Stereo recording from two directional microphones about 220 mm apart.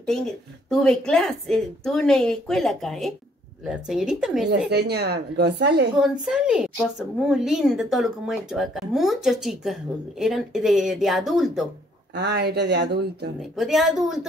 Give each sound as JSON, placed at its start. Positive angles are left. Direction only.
{"t": 0.0, "sound": "a woman's voice", "side_deg": 0}
{"t": 4.5, "sound": "a woman's voice", "side_deg": -50}
{"t": 6.2, "sound": "a woman's voice", "side_deg": -5}
{"t": 12.2, "sound": "a woman's voice", "side_deg": -45}
{"t": 13.6, "sound": "a woman's voice", "side_deg": 0}